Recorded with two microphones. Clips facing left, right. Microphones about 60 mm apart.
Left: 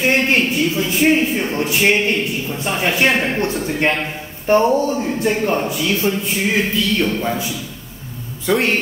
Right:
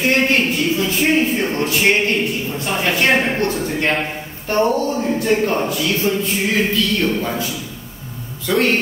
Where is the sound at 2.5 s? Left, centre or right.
Centre.